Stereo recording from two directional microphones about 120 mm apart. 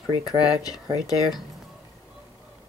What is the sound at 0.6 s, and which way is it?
Speech, 30° left (ahead or behind).